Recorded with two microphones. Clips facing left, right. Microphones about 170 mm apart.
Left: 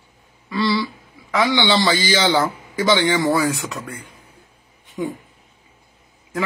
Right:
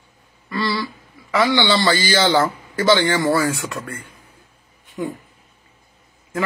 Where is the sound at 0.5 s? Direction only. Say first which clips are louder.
Left 3 dB; centre (ahead or behind).